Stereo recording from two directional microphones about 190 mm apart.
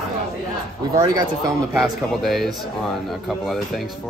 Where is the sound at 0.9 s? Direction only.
15° right (ahead or behind).